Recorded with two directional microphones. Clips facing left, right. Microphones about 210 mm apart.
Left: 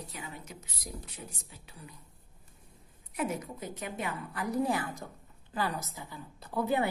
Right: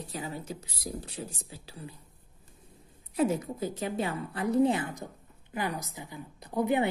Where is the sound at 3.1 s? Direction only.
30° right (ahead or behind).